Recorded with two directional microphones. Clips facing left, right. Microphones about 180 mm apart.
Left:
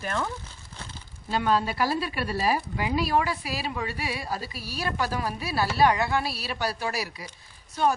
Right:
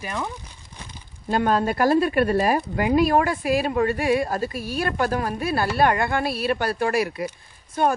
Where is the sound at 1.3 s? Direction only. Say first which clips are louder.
Right 4 dB; 50° right (ahead or behind).